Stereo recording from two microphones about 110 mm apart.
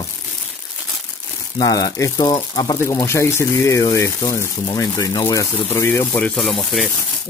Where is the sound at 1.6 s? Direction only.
35° left (ahead or behind).